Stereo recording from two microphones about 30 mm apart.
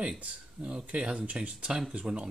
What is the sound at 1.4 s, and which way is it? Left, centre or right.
Speech, right.